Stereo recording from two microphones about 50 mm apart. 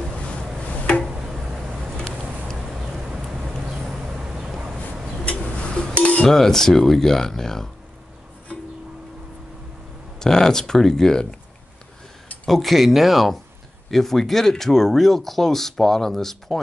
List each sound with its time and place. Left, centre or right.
1.0 s tick-tock: centre
2.5 s a sound: centre
5.2 s bird: left
5.9 s a sound: left
6.2 s speech: centre
10.1 s speech: centre
12.4 s speech: centre